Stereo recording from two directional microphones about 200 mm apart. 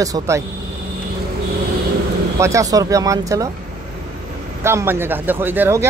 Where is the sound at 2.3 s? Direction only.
15° right (ahead or behind).